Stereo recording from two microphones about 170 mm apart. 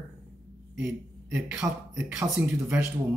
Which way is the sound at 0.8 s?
10° right (ahead or behind).